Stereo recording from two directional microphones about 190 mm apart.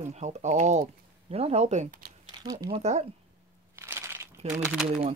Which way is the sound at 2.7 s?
35° right (ahead or behind).